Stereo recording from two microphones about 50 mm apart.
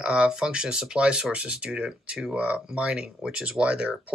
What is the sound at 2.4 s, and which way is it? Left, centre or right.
Speech, right.